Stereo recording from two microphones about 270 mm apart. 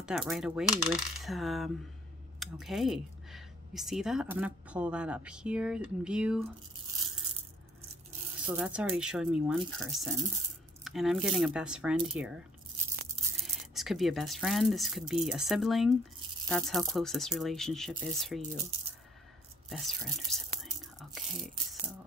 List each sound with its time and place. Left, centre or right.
0.0 s speech: centre
8.5 s speech: centre
13.7 s speech: centre
19.7 s speech: centre
20.8 s whispering: centre